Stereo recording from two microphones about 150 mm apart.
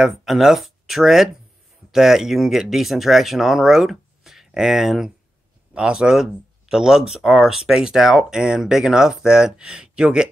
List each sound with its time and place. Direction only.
0.0 s speech: centre (ahead or behind)